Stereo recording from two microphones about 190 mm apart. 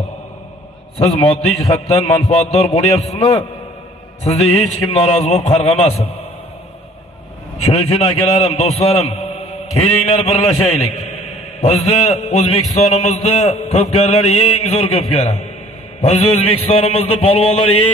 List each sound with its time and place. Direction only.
0.9 s a man's voice: 30° left (ahead or behind)
7.7 s a man's voice: 30° left (ahead or behind)